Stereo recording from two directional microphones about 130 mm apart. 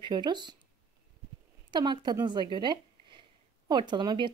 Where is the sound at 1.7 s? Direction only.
35° right (ahead or behind).